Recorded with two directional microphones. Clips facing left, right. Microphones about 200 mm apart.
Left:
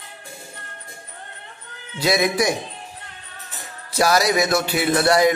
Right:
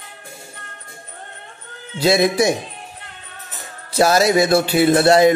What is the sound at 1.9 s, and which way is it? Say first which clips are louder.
Speech: right 4 dB; 30° right (ahead or behind).